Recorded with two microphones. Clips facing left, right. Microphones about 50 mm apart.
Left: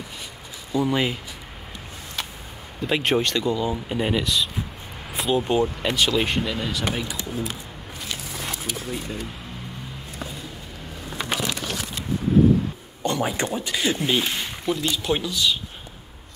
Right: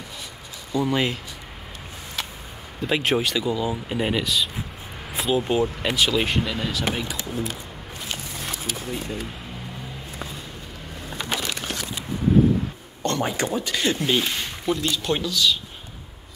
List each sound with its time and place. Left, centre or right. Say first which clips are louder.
0.7 s speech: even; centre
2.8 s speech: even; centre
8.6 s speech: even; centre
11.1 s crumpling: left 1 dB; centre
13.0 s a sound: even; centre
13.5 s speech: right 1 dB; centre
15.2 s a man's voice: right 1 dB; centre